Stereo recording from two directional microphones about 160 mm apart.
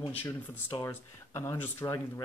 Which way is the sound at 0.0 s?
10° left (ahead or behind).